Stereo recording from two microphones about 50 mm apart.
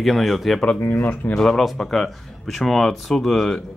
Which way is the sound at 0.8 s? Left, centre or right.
Left.